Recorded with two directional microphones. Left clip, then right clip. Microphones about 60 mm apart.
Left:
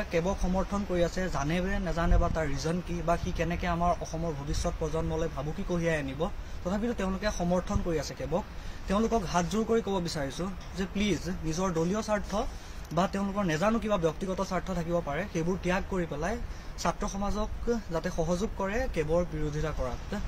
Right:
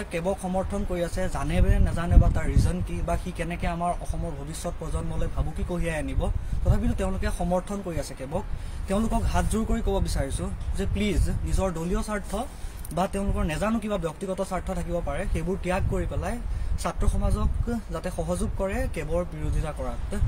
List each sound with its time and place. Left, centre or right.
0.5 s speech: left
3.3 s speech: left
3.8 s speech: left
8.8 s speech: left